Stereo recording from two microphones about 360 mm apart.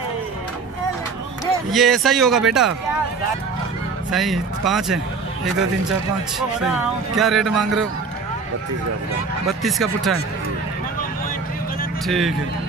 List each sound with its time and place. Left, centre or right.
1.4 s speech: centre
4.1 s speech: centre
6.6 s speech: centre
9.5 s speech: centre
12.1 s speech: centre